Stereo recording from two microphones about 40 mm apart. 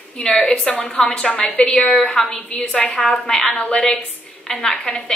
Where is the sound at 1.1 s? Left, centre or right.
Left.